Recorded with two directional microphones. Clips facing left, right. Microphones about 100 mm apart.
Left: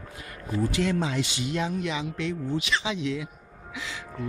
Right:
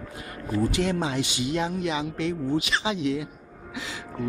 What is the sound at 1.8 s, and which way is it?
Speech, 40° right (ahead or behind).